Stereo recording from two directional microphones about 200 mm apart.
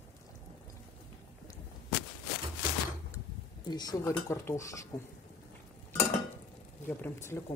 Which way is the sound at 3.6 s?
20° left (ahead or behind).